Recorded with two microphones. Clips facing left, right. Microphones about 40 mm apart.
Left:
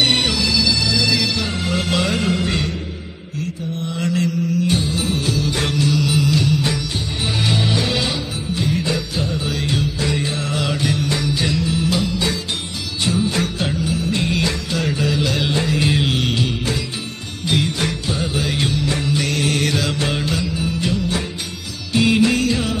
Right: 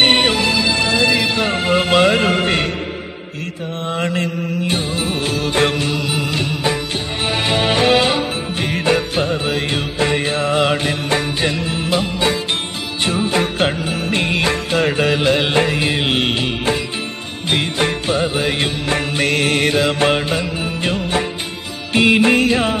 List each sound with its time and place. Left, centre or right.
0.0 s music: right
3.9 s music: right
15.8 s music: right
16.1 s music: right